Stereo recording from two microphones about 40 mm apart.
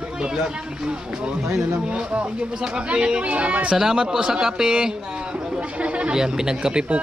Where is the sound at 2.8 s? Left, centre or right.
Right.